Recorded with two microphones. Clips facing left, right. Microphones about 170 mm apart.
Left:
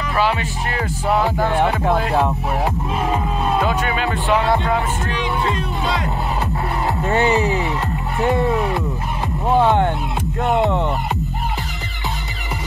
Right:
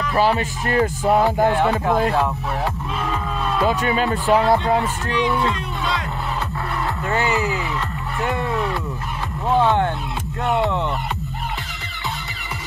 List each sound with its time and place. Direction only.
0.2 s speech: 40° right (ahead or behind)
2.1 s speech: 20° left (ahead or behind)
3.8 s speech: 40° right (ahead or behind)
7.1 s speech: 20° left (ahead or behind)